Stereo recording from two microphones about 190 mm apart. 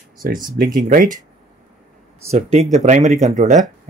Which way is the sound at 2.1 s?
35° right (ahead or behind).